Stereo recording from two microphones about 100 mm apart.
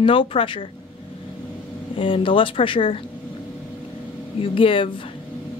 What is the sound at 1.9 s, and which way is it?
A woman's voice, 65° left (ahead or behind).